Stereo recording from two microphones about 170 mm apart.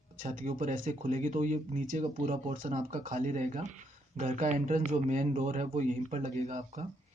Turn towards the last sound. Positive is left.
turn(degrees=-40)  # may be behind; listen again after turning